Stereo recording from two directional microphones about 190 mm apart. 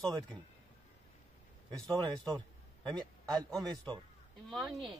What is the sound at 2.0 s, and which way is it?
Speech, 20° right (ahead or behind).